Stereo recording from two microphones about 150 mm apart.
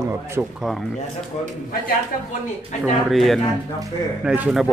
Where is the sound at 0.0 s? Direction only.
15° right (ahead or behind).